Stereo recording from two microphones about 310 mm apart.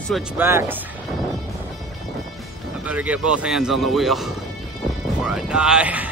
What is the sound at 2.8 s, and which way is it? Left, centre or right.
Speech, centre.